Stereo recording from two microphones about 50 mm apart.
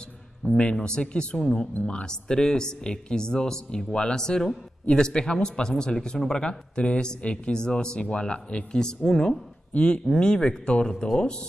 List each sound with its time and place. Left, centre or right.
0.6 s speech: centre
9.8 s speech: left